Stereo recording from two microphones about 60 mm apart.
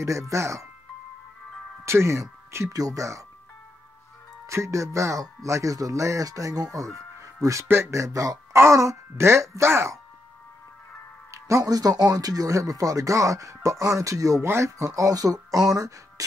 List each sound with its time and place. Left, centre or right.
0.0 s speech: right
1.9 s speech: right
2.7 s speech: right
4.5 s speech: right
7.6 s speech: right
7.9 s speech: right
8.5 s speech: right
11.3 s speech: right